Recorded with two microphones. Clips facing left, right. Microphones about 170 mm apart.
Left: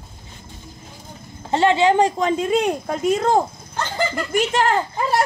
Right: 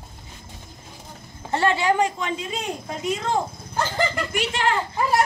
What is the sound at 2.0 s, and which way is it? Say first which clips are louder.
Speech: left 6 dB; 40° left (ahead or behind).